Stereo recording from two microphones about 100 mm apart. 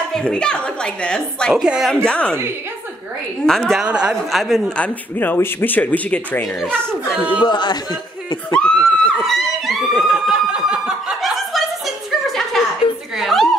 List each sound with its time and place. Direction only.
0.1 s speech: 10° left (ahead or behind)
1.5 s a woman's voice: 5° right (ahead or behind)
2.0 s speech: 10° left (ahead or behind)
3.4 s a woman's voice: centre (ahead or behind)
3.8 s a woman's voice: 10° right (ahead or behind)
4.3 s a woman's voice: centre (ahead or behind)
4.7 s speech: 15° left (ahead or behind)
7.4 s a man's voice: 50° left (ahead or behind)
8.5 s a sound: 10° left (ahead or behind)